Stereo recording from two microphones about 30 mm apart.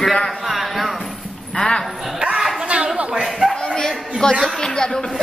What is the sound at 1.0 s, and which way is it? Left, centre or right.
Clip-clop, left.